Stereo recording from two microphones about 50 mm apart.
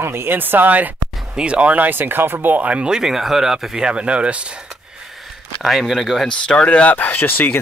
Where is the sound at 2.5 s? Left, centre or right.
Right.